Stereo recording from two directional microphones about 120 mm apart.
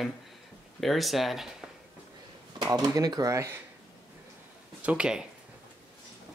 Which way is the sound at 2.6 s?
30° right (ahead or behind).